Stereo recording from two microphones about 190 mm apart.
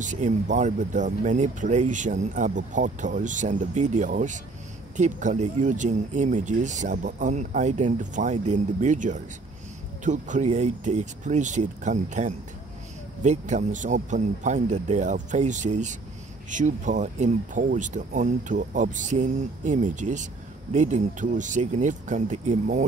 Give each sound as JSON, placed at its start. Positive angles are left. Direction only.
{"t": 0.0, "sound": "speech", "side_deg": -40}